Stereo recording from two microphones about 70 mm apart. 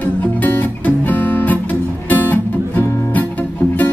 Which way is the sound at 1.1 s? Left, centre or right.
Left.